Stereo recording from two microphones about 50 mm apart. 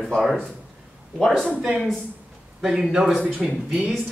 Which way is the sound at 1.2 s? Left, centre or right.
Centre.